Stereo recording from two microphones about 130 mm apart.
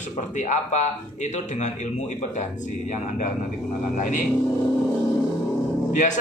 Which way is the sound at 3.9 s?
85° left.